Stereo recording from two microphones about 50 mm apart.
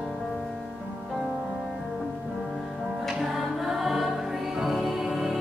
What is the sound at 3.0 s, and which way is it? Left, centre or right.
Music, centre.